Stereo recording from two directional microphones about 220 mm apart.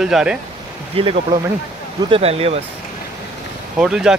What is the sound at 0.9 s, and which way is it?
Speech, 25° right (ahead or behind).